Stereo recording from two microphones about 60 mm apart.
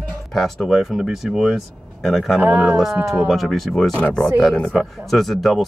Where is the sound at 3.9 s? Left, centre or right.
Centre.